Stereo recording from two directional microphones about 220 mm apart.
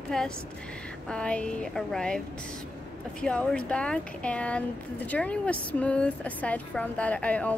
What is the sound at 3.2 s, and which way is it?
A woman's voice, 5° left (ahead or behind).